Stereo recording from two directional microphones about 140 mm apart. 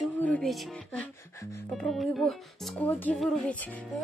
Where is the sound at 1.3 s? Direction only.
20° left (ahead or behind).